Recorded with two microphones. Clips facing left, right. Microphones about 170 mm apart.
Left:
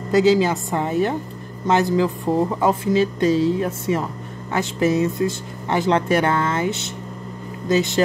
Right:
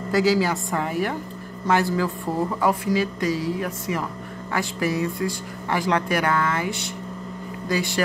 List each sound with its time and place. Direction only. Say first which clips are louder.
0.1 s speech: left 4 dB; 20° left (ahead or behind)